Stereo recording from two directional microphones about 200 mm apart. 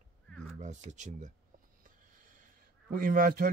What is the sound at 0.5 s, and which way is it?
Speech, 35° right (ahead or behind).